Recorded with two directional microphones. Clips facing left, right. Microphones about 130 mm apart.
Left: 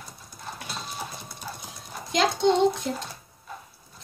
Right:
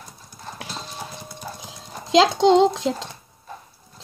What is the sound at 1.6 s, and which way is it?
Speech, 90° right.